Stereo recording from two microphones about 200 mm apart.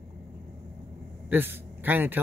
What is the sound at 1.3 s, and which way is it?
Speech, 10° right (ahead or behind).